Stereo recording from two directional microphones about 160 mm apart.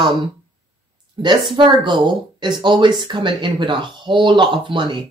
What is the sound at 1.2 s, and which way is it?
A woman's voice, 30° right (ahead or behind).